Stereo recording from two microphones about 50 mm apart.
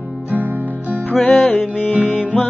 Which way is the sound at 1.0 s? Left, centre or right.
Left.